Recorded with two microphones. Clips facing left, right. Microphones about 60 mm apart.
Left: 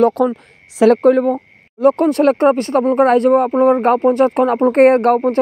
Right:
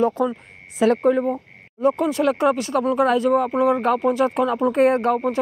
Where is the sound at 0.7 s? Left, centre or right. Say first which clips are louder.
Left 7 dB; left.